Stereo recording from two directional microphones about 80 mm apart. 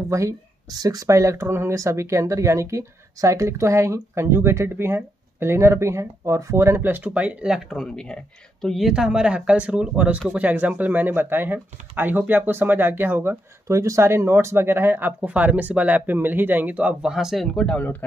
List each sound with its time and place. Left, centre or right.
0.1 s speech: right; by 7.6 s centre
7.7 s speech: centre; by 13.4 s right
13.7 s speech: right; by 16.9 s centre
17.0 s speech: centre
17.6 s speech: centre